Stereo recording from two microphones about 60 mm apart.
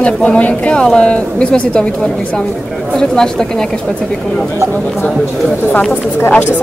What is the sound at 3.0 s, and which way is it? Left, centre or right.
Speech, centre.